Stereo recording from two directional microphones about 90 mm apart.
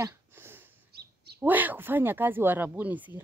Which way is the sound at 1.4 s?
20° right (ahead or behind).